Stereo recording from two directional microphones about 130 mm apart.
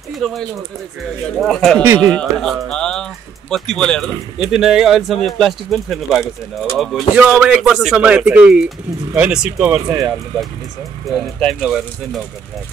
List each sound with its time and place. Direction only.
0.2 s a man's voice: centre (ahead or behind)
9.8 s speech: 30° right (ahead or behind)
11.1 s a man's voice: centre (ahead or behind)